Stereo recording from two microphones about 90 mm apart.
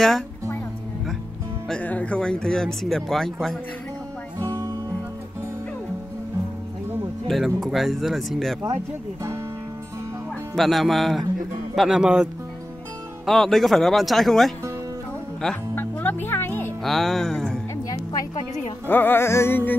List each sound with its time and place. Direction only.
1.7 s speech: 15° left (ahead or behind)
4.4 s music: 30° right (ahead or behind)
7.2 s speech: centre (ahead or behind)
10.5 s speech: centre (ahead or behind)
13.2 s speech: centre (ahead or behind)
15.7 s music: 20° left (ahead or behind)
16.8 s speech: centre (ahead or behind)
17.8 s music: 45° left (ahead or behind)
18.9 s music: 20° left (ahead or behind)